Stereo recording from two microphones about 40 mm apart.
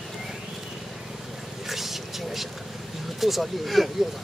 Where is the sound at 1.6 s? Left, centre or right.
Centre.